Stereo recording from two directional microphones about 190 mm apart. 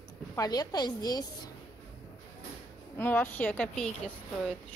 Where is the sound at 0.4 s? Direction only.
20° left (ahead or behind).